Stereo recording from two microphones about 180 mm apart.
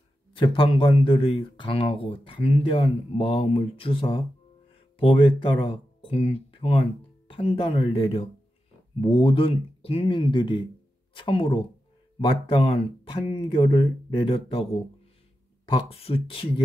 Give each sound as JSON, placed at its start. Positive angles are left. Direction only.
{"t": 0.3, "sound": "speech", "side_deg": 30}